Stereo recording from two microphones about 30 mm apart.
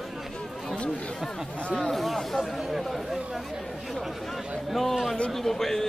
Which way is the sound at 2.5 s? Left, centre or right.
Centre.